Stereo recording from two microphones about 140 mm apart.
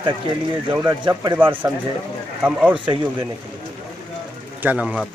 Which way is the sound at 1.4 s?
15° right (ahead or behind).